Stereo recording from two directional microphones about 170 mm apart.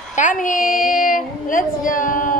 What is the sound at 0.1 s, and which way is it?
A woman's voice, 50° left (ahead or behind).